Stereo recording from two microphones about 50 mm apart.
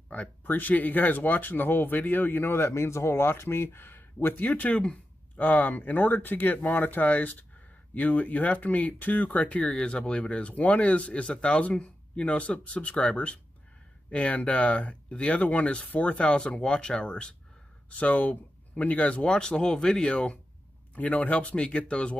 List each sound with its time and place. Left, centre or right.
0.5 s speech: left
4.5 s speech: left
9.7 s speech: centre
19.3 s speech: centre
20.9 s speech: left